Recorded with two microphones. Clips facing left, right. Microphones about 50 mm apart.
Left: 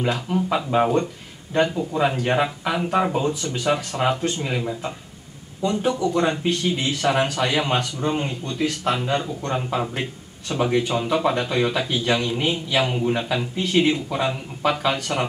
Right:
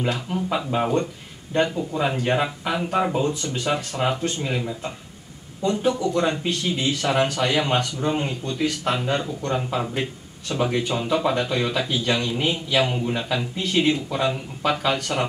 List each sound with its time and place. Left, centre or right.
0.3 s speech: centre
3.7 s speech: centre
4.2 s speech: centre